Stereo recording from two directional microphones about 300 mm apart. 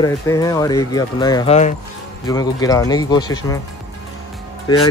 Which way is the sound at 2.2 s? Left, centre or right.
Centre.